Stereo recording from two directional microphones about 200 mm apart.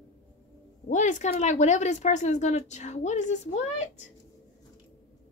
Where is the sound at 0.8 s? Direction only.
40° left (ahead or behind).